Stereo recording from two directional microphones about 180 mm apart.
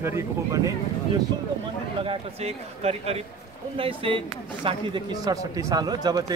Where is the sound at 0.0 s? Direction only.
15° right (ahead or behind).